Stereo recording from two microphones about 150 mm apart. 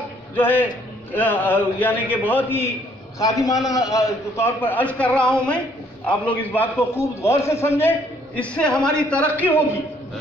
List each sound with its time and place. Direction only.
0.4 s a man's voice: 10° left (ahead or behind)
3.2 s a man's voice: 25° left (ahead or behind)